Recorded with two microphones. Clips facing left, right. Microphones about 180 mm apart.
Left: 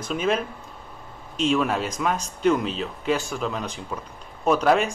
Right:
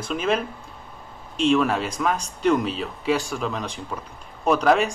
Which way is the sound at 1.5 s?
Centre (ahead or behind).